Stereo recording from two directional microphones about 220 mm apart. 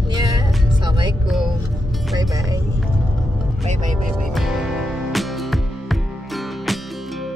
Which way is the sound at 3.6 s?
35° right (ahead or behind).